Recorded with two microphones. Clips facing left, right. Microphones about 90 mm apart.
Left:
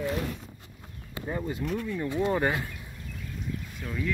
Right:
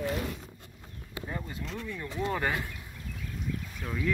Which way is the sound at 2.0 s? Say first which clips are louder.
Left 5 dB; 20° left (ahead or behind).